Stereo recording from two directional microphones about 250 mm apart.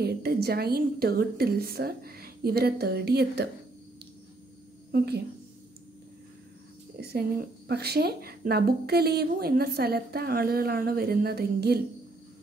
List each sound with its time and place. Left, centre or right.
0.0 s speech: right
4.9 s speech: right
7.0 s speech: right